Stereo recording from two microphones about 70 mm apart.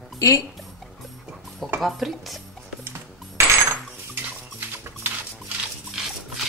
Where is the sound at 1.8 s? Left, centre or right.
Centre.